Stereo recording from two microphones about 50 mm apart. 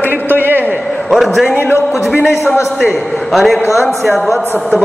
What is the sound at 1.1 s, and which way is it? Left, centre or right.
Speech, centre.